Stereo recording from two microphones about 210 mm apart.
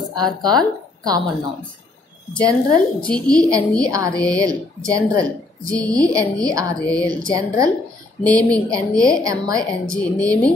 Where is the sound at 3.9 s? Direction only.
15° right (ahead or behind).